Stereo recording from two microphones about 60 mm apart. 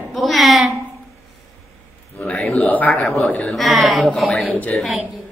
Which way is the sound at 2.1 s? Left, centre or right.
Left.